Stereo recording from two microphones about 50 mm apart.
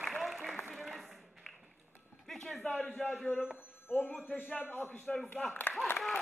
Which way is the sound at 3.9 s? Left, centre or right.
Left.